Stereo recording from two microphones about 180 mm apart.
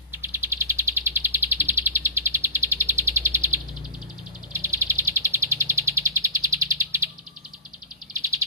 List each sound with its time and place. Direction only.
0.2 s bird: 10° right (ahead or behind)
8.1 s bird: 15° right (ahead or behind)